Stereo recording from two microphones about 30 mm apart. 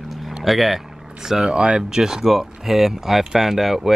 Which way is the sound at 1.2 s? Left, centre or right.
Right.